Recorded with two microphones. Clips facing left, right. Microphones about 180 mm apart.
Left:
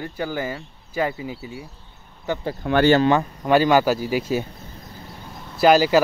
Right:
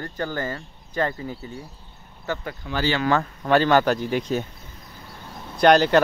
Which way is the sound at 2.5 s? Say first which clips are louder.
Left 10 dB; 55° left (ahead or behind).